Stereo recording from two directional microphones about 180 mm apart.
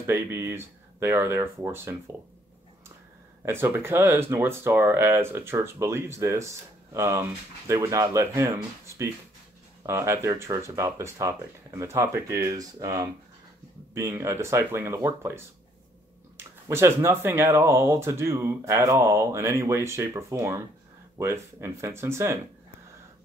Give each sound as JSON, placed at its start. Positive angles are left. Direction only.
{"t": 0.0, "sound": "speech", "side_deg": -15}
{"t": 3.4, "sound": "speech", "side_deg": -10}
{"t": 16.6, "sound": "speech", "side_deg": -15}